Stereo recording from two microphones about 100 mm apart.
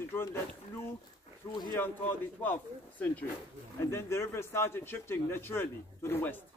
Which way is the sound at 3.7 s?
25° left (ahead or behind).